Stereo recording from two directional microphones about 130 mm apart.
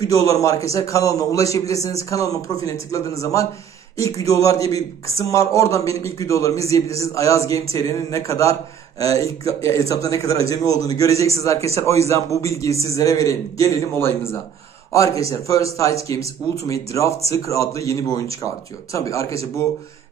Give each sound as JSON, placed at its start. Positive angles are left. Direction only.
{"t": 0.0, "sound": "a man's voice", "side_deg": 30}
{"t": 14.9, "sound": "a man's voice", "side_deg": 25}